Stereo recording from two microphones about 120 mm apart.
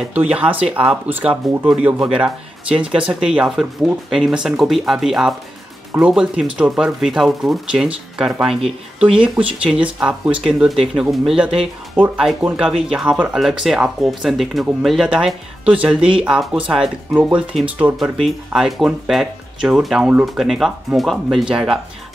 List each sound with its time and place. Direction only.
0.1 s speech: 10° right (ahead or behind)
9.4 s speech: 45° right (ahead or behind)
9.7 s speech: 10° right (ahead or behind)
18.2 s speech: centre (ahead or behind)